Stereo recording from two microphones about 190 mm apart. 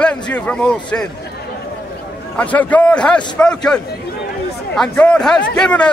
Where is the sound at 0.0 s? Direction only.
5° left (ahead or behind).